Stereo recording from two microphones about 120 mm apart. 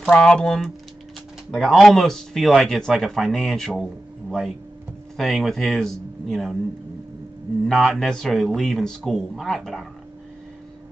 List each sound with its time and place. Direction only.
0.1 s speech: 10° left (ahead or behind)
5.1 s speech: centre (ahead or behind)
7.6 s speech: centre (ahead or behind)